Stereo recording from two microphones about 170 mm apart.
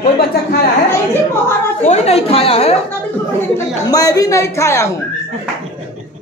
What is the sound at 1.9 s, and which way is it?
Speech, 40° left (ahead or behind).